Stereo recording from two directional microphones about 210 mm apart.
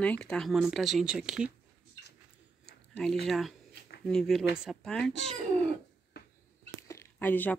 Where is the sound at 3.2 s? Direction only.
Centre (ahead or behind).